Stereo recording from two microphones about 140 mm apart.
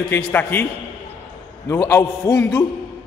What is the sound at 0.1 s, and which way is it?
Speech, 15° left (ahead or behind).